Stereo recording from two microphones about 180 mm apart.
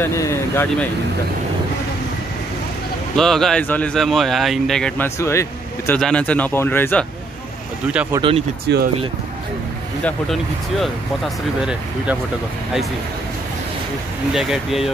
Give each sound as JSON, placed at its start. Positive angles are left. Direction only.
{"t": 0.0, "sound": "speech", "side_deg": 15}
{"t": 3.2, "sound": "speech", "side_deg": 0}
{"t": 5.9, "sound": "speech", "side_deg": 5}
{"t": 7.8, "sound": "speech", "side_deg": -5}
{"t": 8.2, "sound": "speech", "side_deg": -30}
{"t": 8.7, "sound": "speech", "side_deg": -75}
{"t": 10.0, "sound": "speech", "side_deg": 0}
{"t": 14.3, "sound": "speech", "side_deg": 0}